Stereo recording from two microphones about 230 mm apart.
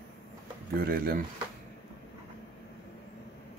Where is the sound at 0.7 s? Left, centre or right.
Right.